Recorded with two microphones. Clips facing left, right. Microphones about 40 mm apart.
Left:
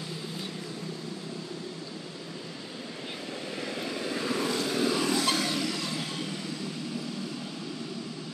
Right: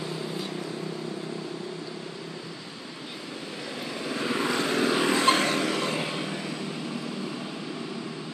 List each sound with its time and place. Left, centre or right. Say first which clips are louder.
3.6 s vehicle: even; centre
4.2 s vehicle: right 3 dB; right
4.5 s vehicle: right 4 dB; right